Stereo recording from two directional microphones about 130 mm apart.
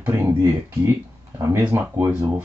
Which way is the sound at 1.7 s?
15° right (ahead or behind).